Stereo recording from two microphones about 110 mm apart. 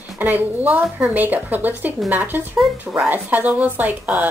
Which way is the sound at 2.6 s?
5° right (ahead or behind).